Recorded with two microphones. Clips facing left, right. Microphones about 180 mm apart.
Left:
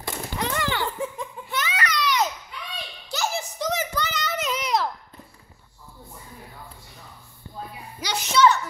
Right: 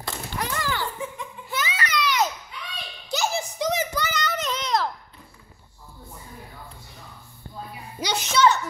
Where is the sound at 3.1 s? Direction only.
15° right (ahead or behind).